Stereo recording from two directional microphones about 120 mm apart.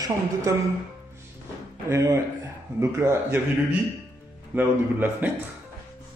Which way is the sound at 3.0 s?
20° right (ahead or behind).